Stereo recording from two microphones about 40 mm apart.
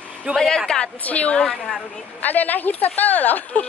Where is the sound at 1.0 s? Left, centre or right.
Left.